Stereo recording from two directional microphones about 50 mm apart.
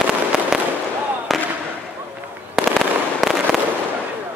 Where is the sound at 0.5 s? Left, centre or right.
Centre.